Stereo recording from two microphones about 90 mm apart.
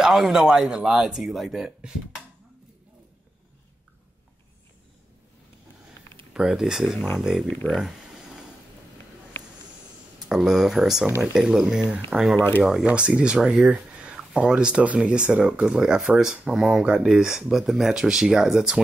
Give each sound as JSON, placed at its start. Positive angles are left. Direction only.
{"t": 0.0, "sound": "speech", "side_deg": -5}
{"t": 6.3, "sound": "speech", "side_deg": -10}
{"t": 7.6, "sound": "speech", "side_deg": 15}
{"t": 10.2, "sound": "speech", "side_deg": -5}
{"t": 12.4, "sound": "speech", "side_deg": 20}
{"t": 12.6, "sound": "speech", "side_deg": -10}